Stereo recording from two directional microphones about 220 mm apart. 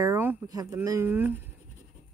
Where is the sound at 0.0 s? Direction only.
10° right (ahead or behind).